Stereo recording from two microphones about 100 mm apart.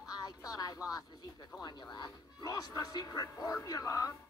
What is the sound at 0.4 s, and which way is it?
Speech, 35° left (ahead or behind).